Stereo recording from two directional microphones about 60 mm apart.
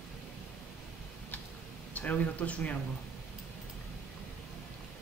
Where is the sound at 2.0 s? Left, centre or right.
Left.